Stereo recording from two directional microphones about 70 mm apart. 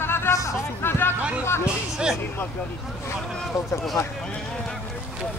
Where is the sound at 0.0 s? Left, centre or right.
Left.